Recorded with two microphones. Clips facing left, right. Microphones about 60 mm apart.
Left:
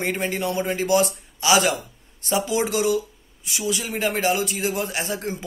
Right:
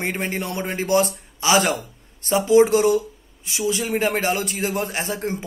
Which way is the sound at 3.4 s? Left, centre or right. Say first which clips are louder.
Right 3 dB; right.